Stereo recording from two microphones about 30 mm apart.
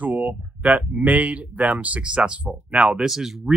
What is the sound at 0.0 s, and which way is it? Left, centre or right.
Speech, right.